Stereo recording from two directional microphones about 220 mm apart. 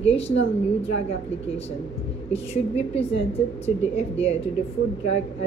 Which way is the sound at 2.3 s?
30° left (ahead or behind).